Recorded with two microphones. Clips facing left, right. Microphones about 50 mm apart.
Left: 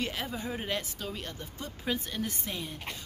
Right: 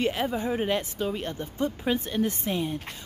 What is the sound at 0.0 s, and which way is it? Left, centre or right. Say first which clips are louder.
Speech: right 8 dB; right.